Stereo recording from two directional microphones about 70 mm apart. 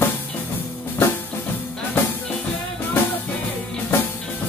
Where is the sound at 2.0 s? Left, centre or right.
Left.